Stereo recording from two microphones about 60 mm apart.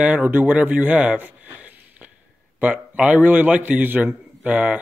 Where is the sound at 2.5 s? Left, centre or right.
Right.